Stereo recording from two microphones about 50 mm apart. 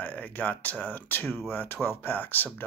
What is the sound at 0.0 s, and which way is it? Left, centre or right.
Speech, left.